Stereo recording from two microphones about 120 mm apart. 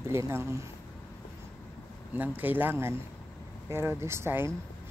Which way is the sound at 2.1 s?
15° right (ahead or behind).